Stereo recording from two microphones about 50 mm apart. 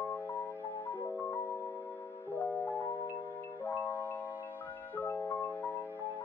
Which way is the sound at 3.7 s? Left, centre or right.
Left.